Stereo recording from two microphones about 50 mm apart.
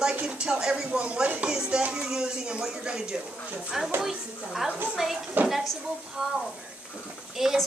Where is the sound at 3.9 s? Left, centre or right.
Right.